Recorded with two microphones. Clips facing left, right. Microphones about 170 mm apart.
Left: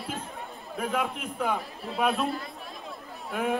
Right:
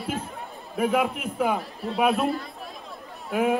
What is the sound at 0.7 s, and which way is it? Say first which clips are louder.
A man's voice: right 6 dB; 15° right (ahead or behind).